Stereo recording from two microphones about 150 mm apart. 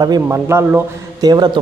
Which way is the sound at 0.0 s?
25° right (ahead or behind).